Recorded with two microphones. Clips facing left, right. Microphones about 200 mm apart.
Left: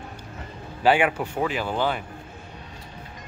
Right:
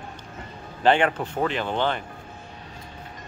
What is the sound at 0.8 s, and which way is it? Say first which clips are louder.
Speech: even; 10° left (ahead or behind).